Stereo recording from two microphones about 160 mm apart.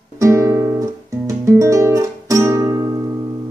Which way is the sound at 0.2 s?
20° right (ahead or behind).